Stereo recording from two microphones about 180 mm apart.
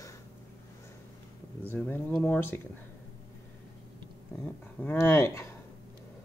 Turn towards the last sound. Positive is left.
turn(degrees=15)  # may be behind; listen again after turning